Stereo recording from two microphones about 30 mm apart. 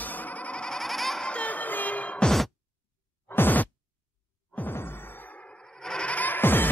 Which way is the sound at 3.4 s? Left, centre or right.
Left.